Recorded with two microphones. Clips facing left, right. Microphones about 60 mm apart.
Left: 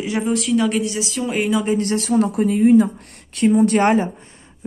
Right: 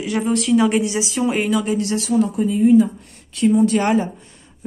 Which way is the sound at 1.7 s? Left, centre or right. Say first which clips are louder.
Left 1 dB; left.